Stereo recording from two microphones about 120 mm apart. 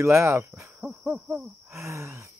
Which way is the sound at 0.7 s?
10° right (ahead or behind).